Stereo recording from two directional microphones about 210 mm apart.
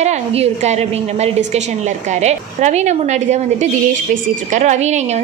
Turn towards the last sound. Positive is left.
turn(degrees=-35)  # may be behind; listen again after turning